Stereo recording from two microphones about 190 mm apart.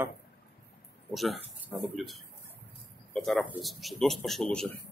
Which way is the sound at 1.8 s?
Centre (ahead or behind).